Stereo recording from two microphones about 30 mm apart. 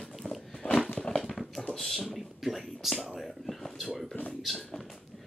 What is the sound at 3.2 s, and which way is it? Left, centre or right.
Whispering, centre.